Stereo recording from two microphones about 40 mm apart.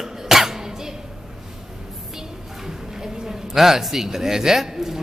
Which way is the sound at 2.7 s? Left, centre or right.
Centre.